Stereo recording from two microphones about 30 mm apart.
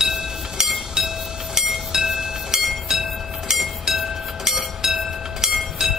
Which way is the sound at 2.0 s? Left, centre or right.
Centre.